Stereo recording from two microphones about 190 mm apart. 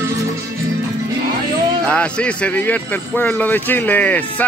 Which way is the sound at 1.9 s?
5° left (ahead or behind).